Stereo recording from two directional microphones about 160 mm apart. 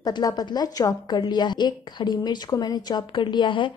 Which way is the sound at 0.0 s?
25° left (ahead or behind).